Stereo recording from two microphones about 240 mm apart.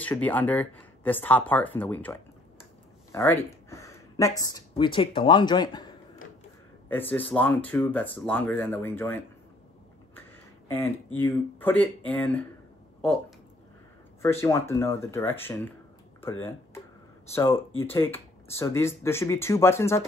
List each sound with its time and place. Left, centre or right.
0.0 s speech: centre
3.7 s a sound: centre
4.4 s speech: centre
11.1 s speech: centre
14.2 s speech: centre
16.2 s a sound: centre
17.3 s speech: centre